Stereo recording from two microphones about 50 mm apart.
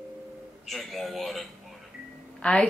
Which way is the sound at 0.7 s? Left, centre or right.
Centre.